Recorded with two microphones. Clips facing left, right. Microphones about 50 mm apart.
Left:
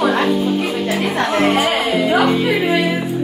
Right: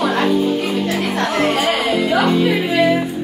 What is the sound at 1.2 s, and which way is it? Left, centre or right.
Speech, left.